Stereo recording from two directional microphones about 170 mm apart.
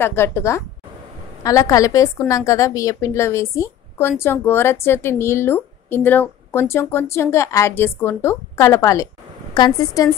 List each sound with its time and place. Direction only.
0.0 s a woman's voice: 15° left (ahead or behind)